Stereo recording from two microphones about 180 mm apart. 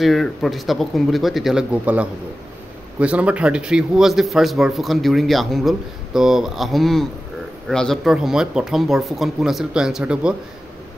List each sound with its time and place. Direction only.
0.0 s a man's voice: centre (ahead or behind)